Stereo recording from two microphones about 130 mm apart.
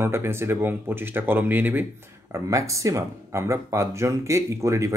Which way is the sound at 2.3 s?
25° right (ahead or behind).